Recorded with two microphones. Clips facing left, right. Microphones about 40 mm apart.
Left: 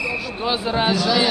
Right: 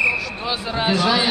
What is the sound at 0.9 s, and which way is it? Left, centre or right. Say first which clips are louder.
Speech: right 4 dB; right.